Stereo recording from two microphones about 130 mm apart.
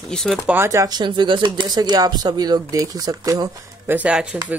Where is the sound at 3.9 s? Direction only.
10° right (ahead or behind).